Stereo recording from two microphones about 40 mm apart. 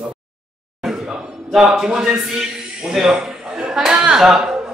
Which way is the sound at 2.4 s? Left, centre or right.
Centre.